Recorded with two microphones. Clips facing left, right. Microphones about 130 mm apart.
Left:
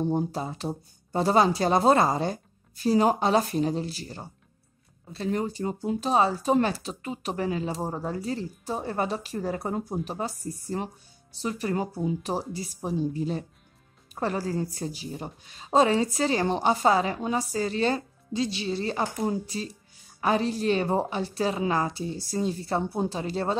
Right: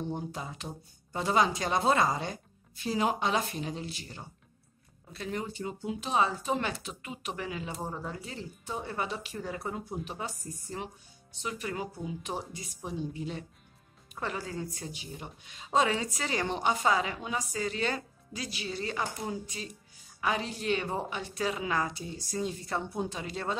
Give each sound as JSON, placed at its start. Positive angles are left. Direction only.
{"t": 0.0, "sound": "speech", "side_deg": 35}